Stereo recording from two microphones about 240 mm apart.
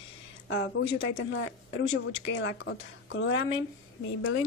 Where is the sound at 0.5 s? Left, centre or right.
Left.